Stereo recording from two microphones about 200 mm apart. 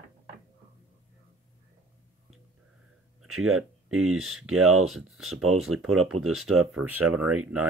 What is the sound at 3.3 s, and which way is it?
Speech, 90° right.